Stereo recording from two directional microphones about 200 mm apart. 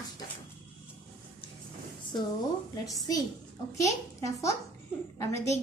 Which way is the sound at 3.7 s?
15° left (ahead or behind).